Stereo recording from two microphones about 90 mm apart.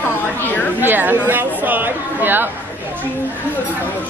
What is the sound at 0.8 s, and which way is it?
Speech, 20° right (ahead or behind).